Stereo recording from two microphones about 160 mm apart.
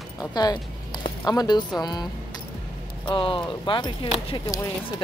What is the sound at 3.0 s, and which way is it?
Speech, 30° left (ahead or behind).